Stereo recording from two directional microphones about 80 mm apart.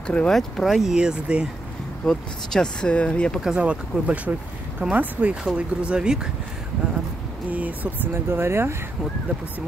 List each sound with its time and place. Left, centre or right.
0.0 s speech: centre
0.4 s speech: centre
2.0 s speech: centre
3.3 s speech: centre
6.8 s a sound: centre
7.5 s speech: centre
8.1 s speech: right